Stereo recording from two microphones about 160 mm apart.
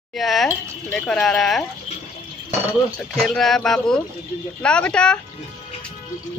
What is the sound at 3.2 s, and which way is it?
Speech, centre (ahead or behind).